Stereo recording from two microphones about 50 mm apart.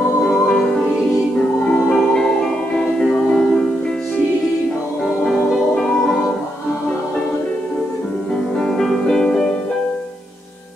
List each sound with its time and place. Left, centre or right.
0.4 s music: centre
3.0 s music: centre
5.2 s music: centre
8.5 s music: centre